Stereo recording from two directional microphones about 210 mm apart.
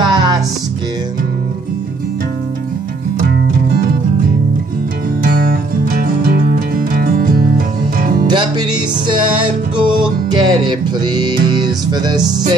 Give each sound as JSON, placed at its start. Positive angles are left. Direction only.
{"t": 0.0, "sound": "music", "side_deg": -20}
{"t": 5.2, "sound": "music", "side_deg": -45}
{"t": 8.3, "sound": "music", "side_deg": -20}